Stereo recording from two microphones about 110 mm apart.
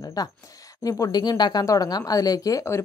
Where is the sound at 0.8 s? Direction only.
30° left (ahead or behind).